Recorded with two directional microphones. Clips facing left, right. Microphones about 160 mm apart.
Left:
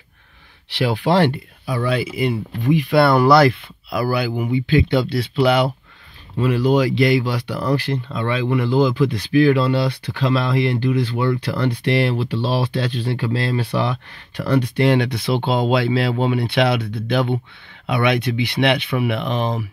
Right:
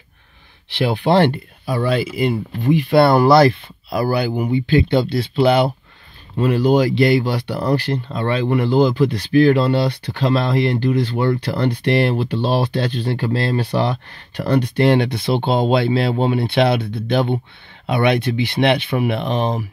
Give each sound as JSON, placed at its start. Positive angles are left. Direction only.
{"t": 0.7, "sound": "speech", "side_deg": -25}